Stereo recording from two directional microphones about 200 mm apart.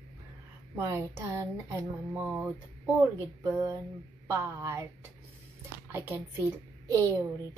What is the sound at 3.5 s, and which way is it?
Speech, 15° right (ahead or behind).